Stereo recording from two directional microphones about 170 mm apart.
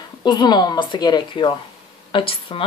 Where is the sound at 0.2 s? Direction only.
25° left (ahead or behind).